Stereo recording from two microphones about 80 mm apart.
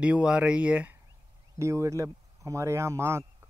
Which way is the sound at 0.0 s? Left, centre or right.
Centre.